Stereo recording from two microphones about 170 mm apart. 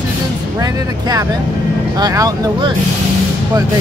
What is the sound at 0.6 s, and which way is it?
Speech, 20° right (ahead or behind).